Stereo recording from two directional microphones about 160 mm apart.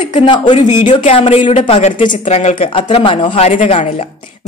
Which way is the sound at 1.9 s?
55° left (ahead or behind).